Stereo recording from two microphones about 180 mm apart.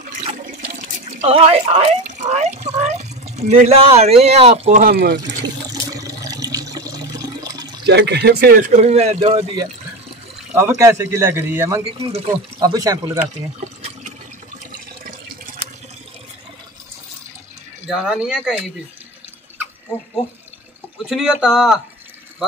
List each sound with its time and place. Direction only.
0.0 s speech: 40° right (ahead or behind)
4.8 s speech: 60° right (ahead or behind)
5.9 s water: 20° right (ahead or behind)
7.8 s speech: 70° right (ahead or behind); by 9.6 s 35° right (ahead or behind)
10.5 s a man's voice: 15° right (ahead or behind)
14.6 s water: 45° right (ahead or behind)
17.9 s speech: 5° right (ahead or behind)
21.1 s speech: centre (ahead or behind)